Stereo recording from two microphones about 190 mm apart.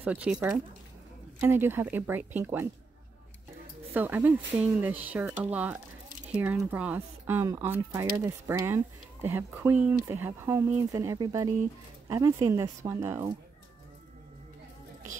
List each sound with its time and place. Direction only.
0.0 s speech: 5° right (ahead or behind)
3.9 s speech: 10° right (ahead or behind)